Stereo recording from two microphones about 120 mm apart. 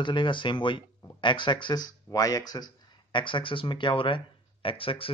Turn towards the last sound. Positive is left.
turn(degrees=50)  # may be behind; listen again after turning